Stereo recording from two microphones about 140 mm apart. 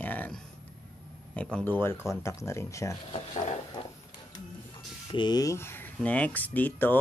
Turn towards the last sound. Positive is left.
turn(degrees=10)  # may be behind; listen again after turning